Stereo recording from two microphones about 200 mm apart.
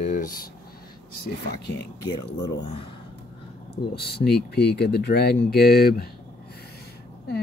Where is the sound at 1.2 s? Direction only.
55° left (ahead or behind).